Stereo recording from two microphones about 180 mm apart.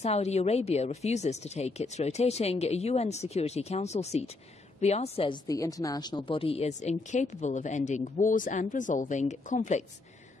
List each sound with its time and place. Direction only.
0.0 s a woman's voice: 35° left (ahead or behind)